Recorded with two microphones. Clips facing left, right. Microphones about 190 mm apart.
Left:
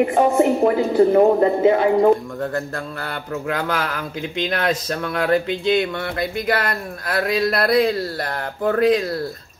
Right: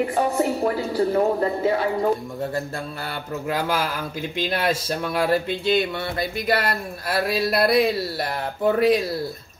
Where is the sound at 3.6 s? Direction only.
10° right (ahead or behind).